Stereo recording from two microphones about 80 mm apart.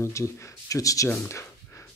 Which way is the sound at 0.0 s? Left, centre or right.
Left.